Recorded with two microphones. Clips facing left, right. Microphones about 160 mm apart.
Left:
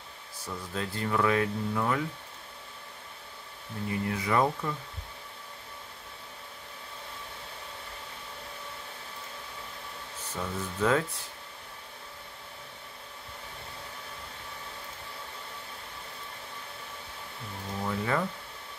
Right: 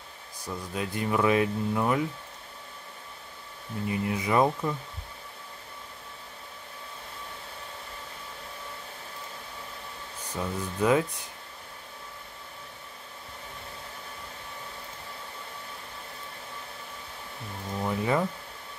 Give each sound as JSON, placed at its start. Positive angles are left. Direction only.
{"t": 0.5, "sound": "speech", "side_deg": -15}
{"t": 3.9, "sound": "speech", "side_deg": -20}
{"t": 10.3, "sound": "speech", "side_deg": -15}
{"t": 17.8, "sound": "speech", "side_deg": -20}